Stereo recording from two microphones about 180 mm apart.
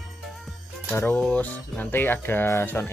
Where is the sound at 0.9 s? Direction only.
10° left (ahead or behind).